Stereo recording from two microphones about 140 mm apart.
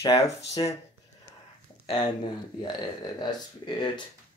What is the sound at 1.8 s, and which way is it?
Speech, 30° left (ahead or behind).